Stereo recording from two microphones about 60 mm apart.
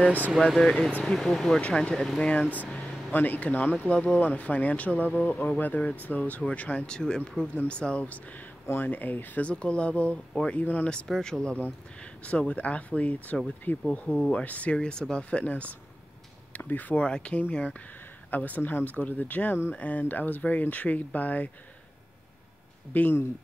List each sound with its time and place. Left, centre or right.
0.5 s speech: centre
1.6 s speech: centre
3.1 s speech: left
8.6 s speech: left
11.1 s speech: centre
11.5 s speech: left
17.0 s speech: centre
22.9 s speech: left